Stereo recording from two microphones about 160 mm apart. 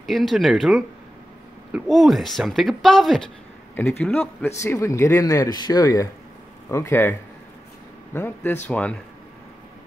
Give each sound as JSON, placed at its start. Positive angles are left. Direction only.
{"t": 0.0, "sound": "speech", "side_deg": 0}